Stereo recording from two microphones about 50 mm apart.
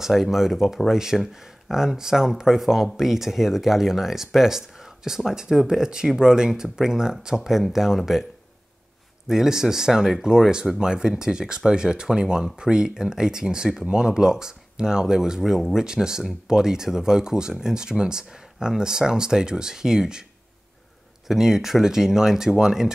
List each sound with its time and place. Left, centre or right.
0.0 s speech: centre
9.3 s speech: centre
21.3 s speech: centre